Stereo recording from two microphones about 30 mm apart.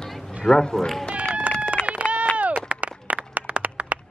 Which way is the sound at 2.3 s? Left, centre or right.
Right.